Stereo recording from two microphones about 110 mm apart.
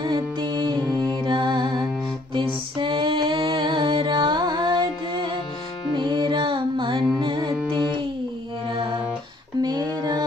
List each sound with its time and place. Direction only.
0.0 s music: 45° right (ahead or behind)
5.9 s music: 45° right (ahead or behind)
9.6 s female singing: 35° right (ahead or behind)